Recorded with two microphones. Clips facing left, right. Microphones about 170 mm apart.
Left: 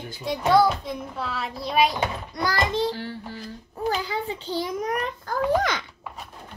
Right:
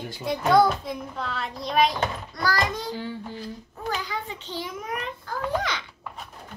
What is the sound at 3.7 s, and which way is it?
A child's voice, 30° left (ahead or behind).